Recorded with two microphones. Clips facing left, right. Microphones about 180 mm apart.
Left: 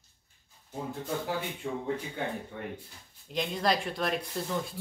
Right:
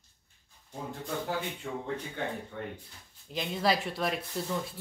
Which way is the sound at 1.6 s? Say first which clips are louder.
Left 2 dB; 20° left (ahead or behind).